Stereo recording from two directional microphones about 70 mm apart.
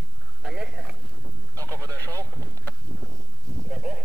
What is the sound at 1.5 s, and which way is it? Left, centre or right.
Speech, right.